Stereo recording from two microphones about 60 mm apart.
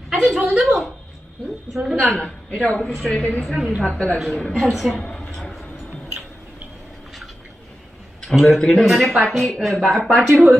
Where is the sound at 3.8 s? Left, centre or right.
Centre.